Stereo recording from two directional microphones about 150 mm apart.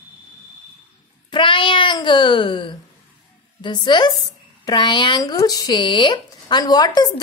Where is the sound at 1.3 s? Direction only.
35° left (ahead or behind).